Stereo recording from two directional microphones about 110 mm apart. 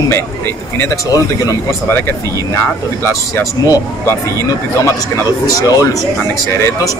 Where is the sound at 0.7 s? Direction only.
30° left (ahead or behind).